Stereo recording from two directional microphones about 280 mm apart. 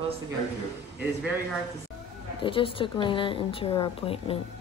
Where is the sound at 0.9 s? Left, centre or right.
Centre.